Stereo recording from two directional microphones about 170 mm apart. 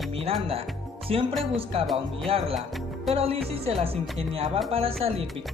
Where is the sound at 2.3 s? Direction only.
35° right (ahead or behind).